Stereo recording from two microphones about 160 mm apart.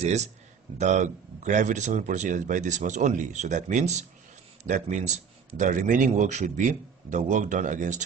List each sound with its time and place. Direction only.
0.0 s a man's voice: 45° right (ahead or behind)